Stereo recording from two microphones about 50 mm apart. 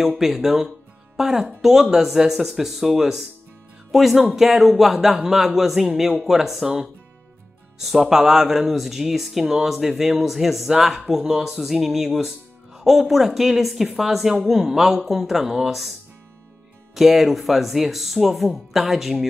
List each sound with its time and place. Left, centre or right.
0.2 s speech: centre
16.9 s speech: centre